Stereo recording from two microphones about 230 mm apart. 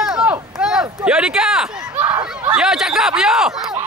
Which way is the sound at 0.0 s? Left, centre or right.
Centre.